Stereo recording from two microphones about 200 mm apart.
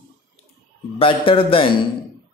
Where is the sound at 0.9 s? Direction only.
25° left (ahead or behind).